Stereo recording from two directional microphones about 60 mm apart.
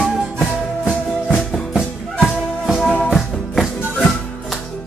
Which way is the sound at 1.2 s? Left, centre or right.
Centre.